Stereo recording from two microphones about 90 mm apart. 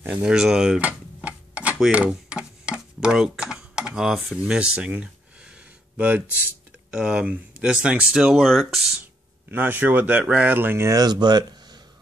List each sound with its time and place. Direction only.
0.0 s tick-tock: 15° right (ahead or behind)
1.9 s speech: 15° right (ahead or behind)
4.6 s a sound: 10° right (ahead or behind)
6.9 s speech: 10° right (ahead or behind)
8.4 s speech: 5° left (ahead or behind)
9.5 s speech: 20° right (ahead or behind)
10.9 s speech: 50° right (ahead or behind)